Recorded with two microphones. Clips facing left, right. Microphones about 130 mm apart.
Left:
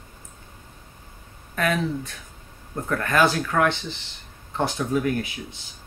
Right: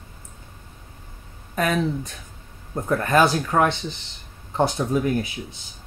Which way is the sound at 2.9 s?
20° right (ahead or behind).